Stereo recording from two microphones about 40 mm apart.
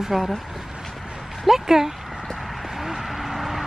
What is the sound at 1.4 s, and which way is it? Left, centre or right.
Speech, centre.